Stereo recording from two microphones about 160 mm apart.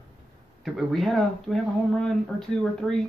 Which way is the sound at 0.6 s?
Centre (ahead or behind).